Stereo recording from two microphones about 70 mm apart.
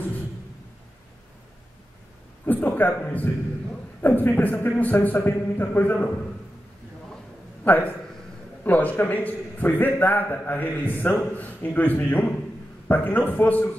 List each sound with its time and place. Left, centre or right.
2.4 s a man's voice: left
7.6 s a man's voice: left